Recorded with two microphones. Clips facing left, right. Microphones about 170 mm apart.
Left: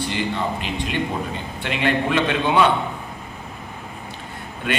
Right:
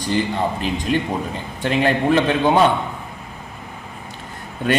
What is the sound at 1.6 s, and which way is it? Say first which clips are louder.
A man's voice: right 4 dB; 40° right (ahead or behind).